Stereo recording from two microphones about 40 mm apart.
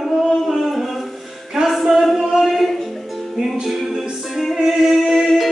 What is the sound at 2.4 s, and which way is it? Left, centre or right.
Music, centre.